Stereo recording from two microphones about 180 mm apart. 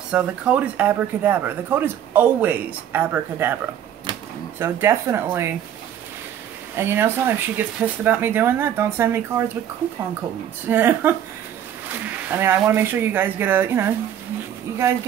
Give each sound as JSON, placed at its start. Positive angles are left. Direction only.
{"t": 0.1, "sound": "speech", "side_deg": -5}
{"t": 4.6, "sound": "speech", "side_deg": -15}
{"t": 6.7, "sound": "speech", "side_deg": -15}
{"t": 10.7, "sound": "speech", "side_deg": -10}
{"t": 12.3, "sound": "speech", "side_deg": -10}